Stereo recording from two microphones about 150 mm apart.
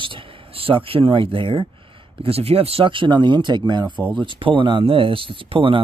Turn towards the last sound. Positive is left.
turn(degrees=-35)  # may be behind; listen again after turning